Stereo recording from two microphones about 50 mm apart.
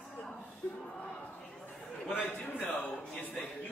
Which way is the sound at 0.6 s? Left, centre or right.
Left.